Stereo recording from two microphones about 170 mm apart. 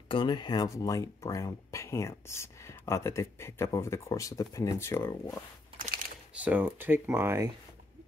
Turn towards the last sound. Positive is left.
turn(degrees=-15)  # may be behind; listen again after turning